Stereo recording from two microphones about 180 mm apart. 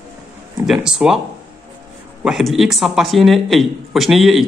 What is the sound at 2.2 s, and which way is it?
A man's voice, centre (ahead or behind).